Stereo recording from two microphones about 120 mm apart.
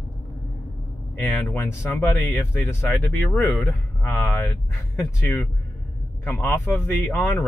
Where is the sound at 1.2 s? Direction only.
5° left (ahead or behind).